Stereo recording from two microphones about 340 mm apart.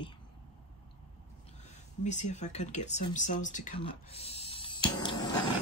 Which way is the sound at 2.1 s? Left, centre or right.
Centre.